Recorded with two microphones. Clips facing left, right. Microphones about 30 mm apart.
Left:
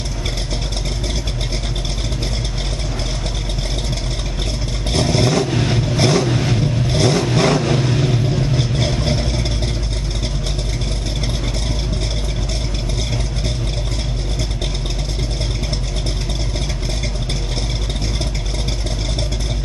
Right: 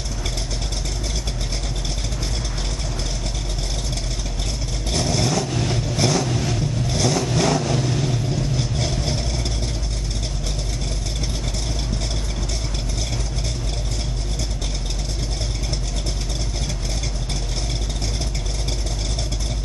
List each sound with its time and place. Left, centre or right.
4.9 s vehicle: left